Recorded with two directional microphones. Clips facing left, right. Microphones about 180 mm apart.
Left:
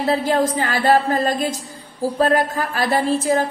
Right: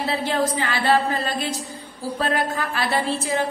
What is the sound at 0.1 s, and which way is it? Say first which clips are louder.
A woman's voice: left 6 dB; 45° left (ahead or behind).